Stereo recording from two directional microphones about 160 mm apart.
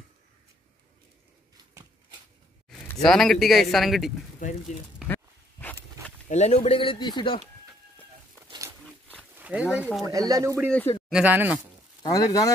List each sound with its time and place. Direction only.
3.0 s speech: centre (ahead or behind)
5.0 s dog: 10° left (ahead or behind)
6.2 s speech: 45° left (ahead or behind); by 7.4 s 30° left (ahead or behind)
9.4 s speech: 10° right (ahead or behind)
10.0 s speech: 20° right (ahead or behind)
11.1 s speech: 5° right (ahead or behind)
12.0 s speech: 20° left (ahead or behind)